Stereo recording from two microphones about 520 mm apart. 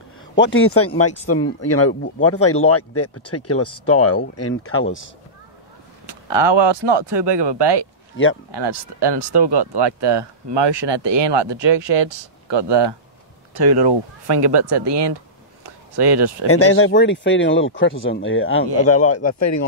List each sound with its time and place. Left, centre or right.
0.4 s speech: left
6.0 s speech: right
15.6 s a sound: right
16.4 s speech: left